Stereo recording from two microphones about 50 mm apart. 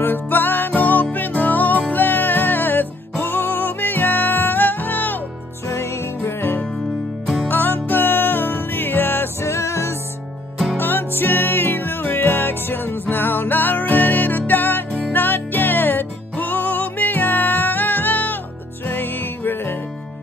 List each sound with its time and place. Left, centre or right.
0.0 s music: left
5.7 s music: left
7.4 s music: left
9.4 s music: left
10.8 s music: left